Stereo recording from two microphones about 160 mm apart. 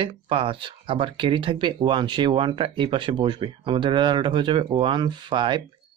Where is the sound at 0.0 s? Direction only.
35° right (ahead or behind).